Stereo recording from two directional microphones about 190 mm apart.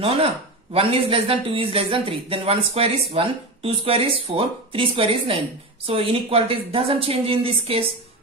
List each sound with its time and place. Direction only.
0.0 s speech: 30° right (ahead or behind)